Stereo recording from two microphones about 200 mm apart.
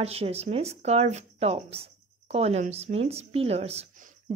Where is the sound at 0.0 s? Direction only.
30° right (ahead or behind).